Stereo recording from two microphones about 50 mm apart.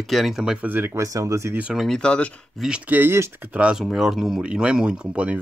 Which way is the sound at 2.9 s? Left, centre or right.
Right.